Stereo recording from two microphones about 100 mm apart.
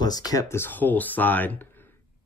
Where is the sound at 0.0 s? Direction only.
40° left (ahead or behind).